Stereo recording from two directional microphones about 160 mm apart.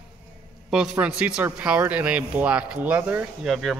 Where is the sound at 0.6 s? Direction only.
5° right (ahead or behind).